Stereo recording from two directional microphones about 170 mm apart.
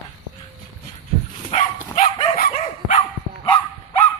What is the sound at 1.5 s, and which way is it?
Dog, 40° left (ahead or behind).